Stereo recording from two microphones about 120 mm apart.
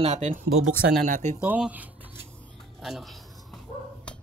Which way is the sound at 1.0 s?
80° right.